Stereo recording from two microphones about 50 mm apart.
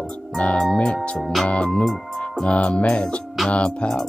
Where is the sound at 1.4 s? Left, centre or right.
Left.